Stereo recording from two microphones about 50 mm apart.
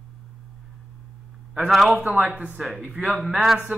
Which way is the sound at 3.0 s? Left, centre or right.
Centre.